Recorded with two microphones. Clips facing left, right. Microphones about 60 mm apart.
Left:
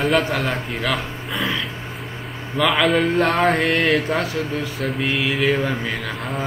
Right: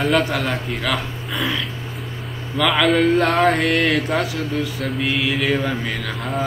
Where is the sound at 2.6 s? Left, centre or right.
Centre.